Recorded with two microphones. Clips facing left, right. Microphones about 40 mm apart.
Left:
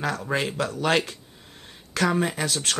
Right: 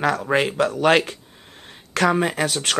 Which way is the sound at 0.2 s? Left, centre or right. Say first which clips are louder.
Right 6 dB; right.